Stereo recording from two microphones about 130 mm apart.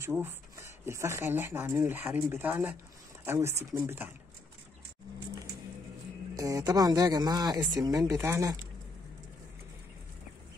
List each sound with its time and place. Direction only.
0.0 s speech: 15° right (ahead or behind)
6.3 s speech: 25° right (ahead or behind)